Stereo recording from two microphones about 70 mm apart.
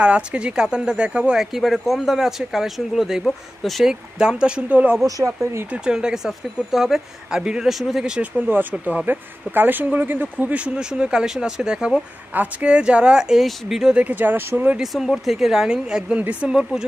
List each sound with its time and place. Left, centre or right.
0.0 s speech: centre
1.4 s speech: centre
4.2 s speech: centre
5.0 s speech: right
5.7 s speech: centre
13.9 s speech: right
14.8 s speech: centre